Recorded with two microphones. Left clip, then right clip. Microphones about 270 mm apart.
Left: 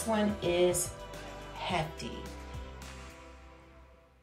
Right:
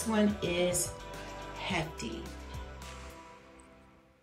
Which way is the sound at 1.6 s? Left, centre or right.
Centre.